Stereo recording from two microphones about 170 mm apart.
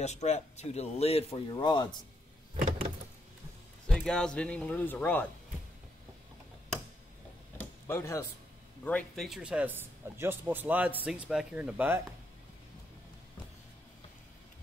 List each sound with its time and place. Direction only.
0.0 s a man's voice: 40° left (ahead or behind)
1.5 s speech: 25° left (ahead or behind)
3.8 s speech: 5° left (ahead or behind)
7.8 s speech: 15° left (ahead or behind); by 12.0 s 10° right (ahead or behind)